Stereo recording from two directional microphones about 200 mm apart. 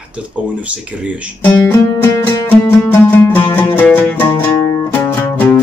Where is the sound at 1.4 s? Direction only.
10° left (ahead or behind).